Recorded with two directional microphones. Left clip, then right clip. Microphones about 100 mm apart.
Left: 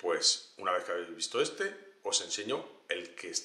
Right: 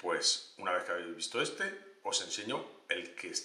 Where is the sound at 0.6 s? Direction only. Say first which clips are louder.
Left 2 dB; 25° left (ahead or behind).